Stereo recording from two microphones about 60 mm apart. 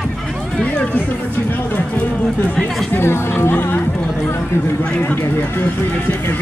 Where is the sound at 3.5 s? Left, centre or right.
Left.